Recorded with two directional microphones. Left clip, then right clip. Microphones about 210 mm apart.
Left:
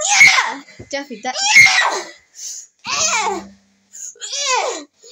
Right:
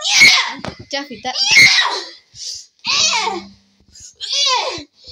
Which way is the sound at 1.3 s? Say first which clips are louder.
Even; 60° left (ahead or behind).